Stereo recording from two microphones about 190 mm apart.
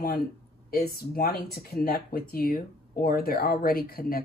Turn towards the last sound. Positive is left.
turn(degrees=50)  # may be behind; listen again after turning